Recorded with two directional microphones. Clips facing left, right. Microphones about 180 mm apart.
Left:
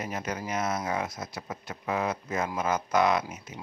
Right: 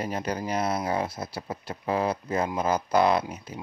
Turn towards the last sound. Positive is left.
turn(degrees=-35)  # may be behind; listen again after turning